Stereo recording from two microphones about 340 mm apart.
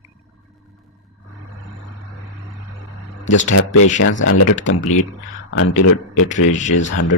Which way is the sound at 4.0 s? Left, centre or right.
Left.